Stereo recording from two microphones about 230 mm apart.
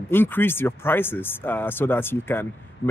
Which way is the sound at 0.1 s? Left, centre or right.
Centre.